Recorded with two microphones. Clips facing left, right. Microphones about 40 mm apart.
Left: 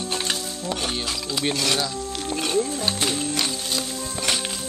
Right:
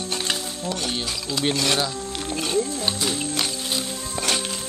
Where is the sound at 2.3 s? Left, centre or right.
Centre.